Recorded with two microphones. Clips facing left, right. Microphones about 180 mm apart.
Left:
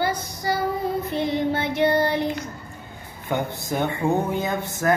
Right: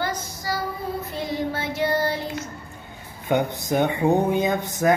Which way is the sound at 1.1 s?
20° left (ahead or behind).